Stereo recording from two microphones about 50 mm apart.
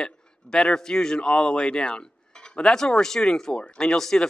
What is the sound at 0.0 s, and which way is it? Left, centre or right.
Speech, centre.